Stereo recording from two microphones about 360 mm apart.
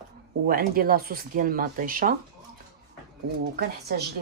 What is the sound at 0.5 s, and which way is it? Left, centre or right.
Speech, right.